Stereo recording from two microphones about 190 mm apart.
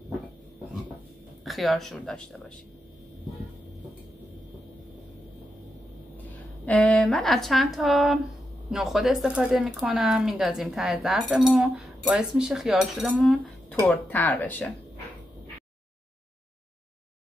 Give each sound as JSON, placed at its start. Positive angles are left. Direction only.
{"t": 1.4, "sound": "speech", "side_deg": 0}
{"t": 6.6, "sound": "speech", "side_deg": 5}